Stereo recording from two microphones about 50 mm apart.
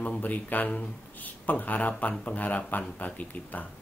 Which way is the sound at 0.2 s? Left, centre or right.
Left.